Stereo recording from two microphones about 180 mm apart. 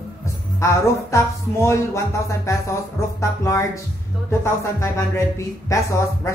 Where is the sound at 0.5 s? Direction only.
15° left (ahead or behind).